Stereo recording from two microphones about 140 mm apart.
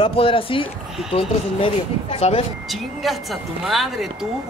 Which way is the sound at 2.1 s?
45° left (ahead or behind).